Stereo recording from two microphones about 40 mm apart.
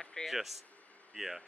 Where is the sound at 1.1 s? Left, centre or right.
Centre.